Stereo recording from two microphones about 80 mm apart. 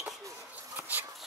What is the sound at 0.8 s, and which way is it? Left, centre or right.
Insect, right.